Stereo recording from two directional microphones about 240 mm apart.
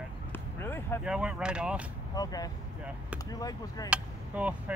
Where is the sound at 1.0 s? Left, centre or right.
Centre.